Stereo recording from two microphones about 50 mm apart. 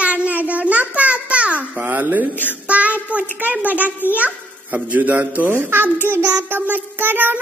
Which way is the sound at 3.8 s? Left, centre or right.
Left.